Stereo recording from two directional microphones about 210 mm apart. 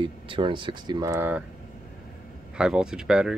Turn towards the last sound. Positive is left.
turn(degrees=-5)  # may be behind; listen again after turning